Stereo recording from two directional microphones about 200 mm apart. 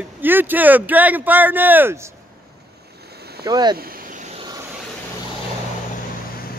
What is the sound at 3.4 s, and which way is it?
Speech, 20° right (ahead or behind).